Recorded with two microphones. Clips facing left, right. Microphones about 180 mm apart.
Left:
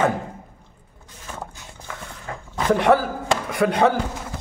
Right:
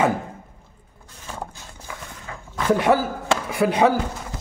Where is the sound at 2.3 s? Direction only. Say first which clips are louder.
Left 5 dB; 45° left (ahead or behind).